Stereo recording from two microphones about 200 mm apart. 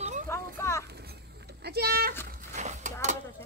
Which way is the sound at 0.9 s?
55° right (ahead or behind).